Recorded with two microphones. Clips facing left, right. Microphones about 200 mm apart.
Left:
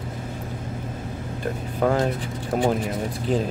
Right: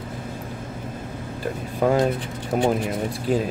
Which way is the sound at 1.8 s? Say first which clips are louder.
Right 2 dB; 10° right (ahead or behind).